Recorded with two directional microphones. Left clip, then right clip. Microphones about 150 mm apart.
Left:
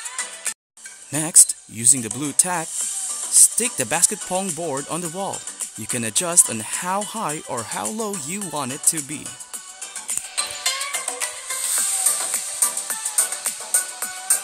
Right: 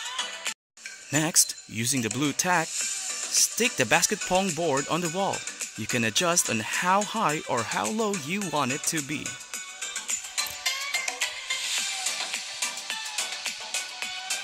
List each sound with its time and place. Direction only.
1.1 s speech: centre (ahead or behind)
10.3 s music: 45° left (ahead or behind)